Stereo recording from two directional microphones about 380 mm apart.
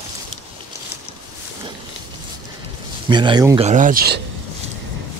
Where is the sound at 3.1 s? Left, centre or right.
Centre.